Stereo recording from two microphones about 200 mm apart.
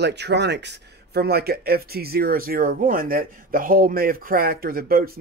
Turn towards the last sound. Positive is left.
turn(degrees=-50)  # may be behind; listen again after turning